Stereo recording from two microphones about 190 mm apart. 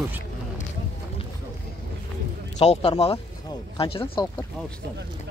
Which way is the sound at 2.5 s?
35° left (ahead or behind).